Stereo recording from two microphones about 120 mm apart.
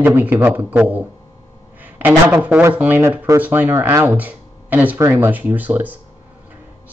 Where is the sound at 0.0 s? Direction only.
15° right (ahead or behind).